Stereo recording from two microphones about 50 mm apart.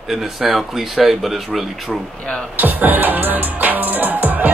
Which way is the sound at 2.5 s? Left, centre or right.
Right.